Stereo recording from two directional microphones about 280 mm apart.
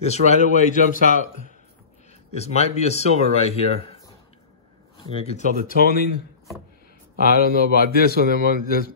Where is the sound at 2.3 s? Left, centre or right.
Left.